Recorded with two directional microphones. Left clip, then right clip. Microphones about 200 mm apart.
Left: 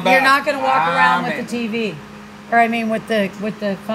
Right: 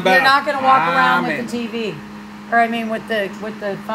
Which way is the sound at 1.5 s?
Centre (ahead or behind).